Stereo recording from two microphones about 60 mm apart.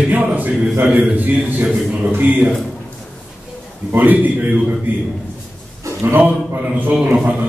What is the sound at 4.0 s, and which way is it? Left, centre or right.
Speech, right.